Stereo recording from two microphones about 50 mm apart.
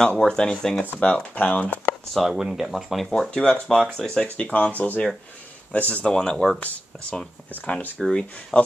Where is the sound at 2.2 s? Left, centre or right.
Centre.